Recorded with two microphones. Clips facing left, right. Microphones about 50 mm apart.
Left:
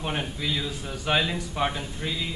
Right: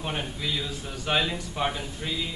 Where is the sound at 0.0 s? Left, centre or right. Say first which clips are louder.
Left 2 dB; centre.